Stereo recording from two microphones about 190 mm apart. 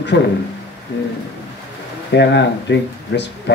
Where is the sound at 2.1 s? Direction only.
65° left (ahead or behind).